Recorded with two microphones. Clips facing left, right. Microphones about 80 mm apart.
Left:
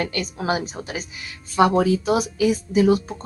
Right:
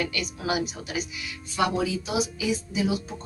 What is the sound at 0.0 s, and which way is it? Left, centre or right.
Speech, left.